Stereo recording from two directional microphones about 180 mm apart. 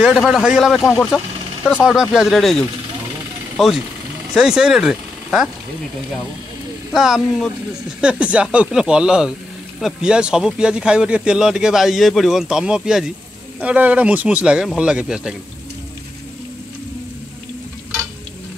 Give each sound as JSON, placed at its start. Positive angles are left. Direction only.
{"t": 0.0, "sound": "speech", "side_deg": -5}
{"t": 6.9, "sound": "speech", "side_deg": -5}